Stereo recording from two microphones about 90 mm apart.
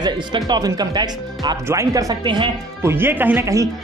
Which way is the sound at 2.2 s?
65° right (ahead or behind).